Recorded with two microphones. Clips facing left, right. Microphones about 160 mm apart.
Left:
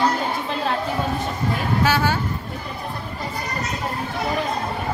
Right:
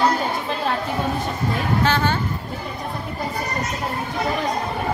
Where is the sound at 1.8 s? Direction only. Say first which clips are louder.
Left 1 dB; 10° left (ahead or behind).